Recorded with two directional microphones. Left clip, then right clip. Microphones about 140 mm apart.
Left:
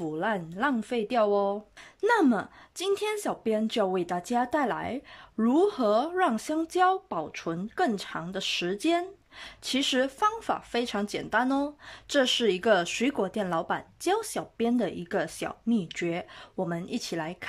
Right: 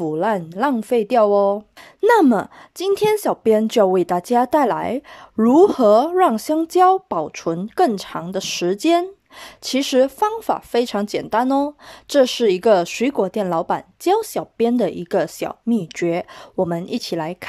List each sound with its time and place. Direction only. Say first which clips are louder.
0.0 s speech: right 10 dB; 35° right (ahead or behind)